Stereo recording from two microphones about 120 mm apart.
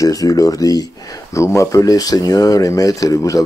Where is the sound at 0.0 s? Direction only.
30° left (ahead or behind).